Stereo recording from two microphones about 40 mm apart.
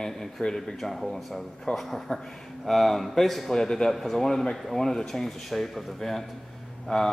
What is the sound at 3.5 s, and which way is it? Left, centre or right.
Speech, centre.